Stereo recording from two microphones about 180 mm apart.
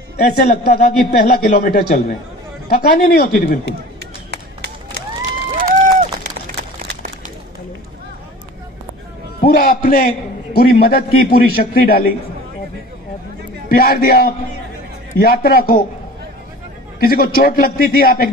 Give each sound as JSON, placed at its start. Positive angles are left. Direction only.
{"t": 0.2, "sound": "a man's voice", "side_deg": 65}
{"t": 1.4, "sound": "a man's voice", "side_deg": 50}
{"t": 4.3, "sound": "run", "side_deg": -65}
{"t": 5.6, "sound": "run", "side_deg": -50}
{"t": 9.4, "sound": "a man's voice", "side_deg": 60}
{"t": 13.7, "sound": "a man's voice", "side_deg": 55}
{"t": 17.0, "sound": "a man's voice", "side_deg": 55}